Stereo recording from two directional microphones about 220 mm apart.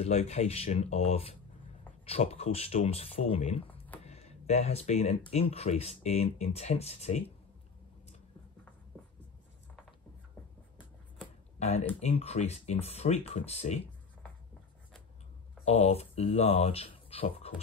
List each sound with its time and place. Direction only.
0.0 s speech: 30° left (ahead or behind)
4.0 s a sound: 30° left (ahead or behind)
5.3 s speech: 30° left (ahead or behind)
12.0 s speech: 30° left (ahead or behind)
15.6 s speech: 30° left (ahead or behind)